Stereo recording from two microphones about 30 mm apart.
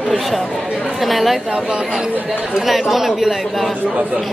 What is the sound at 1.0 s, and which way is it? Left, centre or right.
Speech, centre.